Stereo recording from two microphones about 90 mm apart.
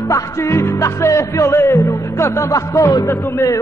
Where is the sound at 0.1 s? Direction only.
30° left (ahead or behind).